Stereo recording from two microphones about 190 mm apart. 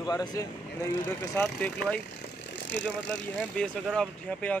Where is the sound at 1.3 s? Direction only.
5° left (ahead or behind).